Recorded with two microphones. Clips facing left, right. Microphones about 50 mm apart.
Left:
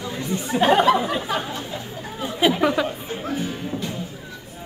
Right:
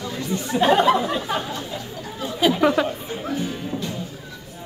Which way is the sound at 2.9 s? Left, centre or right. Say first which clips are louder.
Even; centre.